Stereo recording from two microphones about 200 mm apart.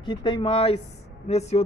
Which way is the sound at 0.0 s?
25° left (ahead or behind).